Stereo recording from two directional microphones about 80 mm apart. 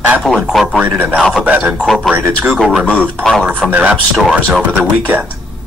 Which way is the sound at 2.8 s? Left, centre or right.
Centre.